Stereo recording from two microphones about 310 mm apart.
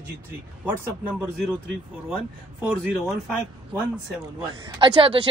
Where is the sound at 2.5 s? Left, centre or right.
Centre.